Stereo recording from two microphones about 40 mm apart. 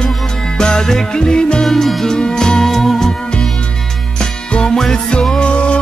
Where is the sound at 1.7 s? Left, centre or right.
Centre.